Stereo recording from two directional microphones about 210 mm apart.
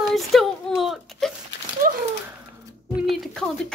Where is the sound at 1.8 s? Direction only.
40° right (ahead or behind).